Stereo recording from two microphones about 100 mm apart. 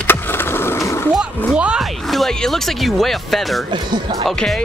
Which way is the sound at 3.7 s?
50° right (ahead or behind).